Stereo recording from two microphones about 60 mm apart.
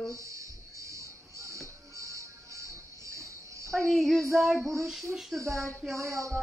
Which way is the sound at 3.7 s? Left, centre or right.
Centre.